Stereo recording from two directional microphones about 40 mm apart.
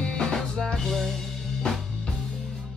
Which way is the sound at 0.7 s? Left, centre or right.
Centre.